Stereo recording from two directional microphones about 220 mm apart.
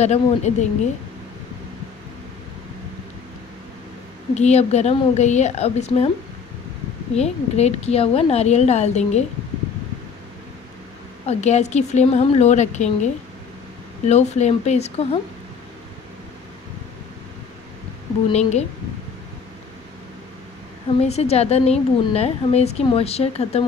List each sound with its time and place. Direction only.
0.0 s a woman's voice: 30° left (ahead or behind)
4.4 s a woman's voice: 30° left (ahead or behind)
7.2 s a woman's voice: 30° left (ahead or behind)
11.2 s a woman's voice: 30° left (ahead or behind)
18.3 s a woman's voice: 30° left (ahead or behind)
21.0 s a woman's voice: 30° left (ahead or behind)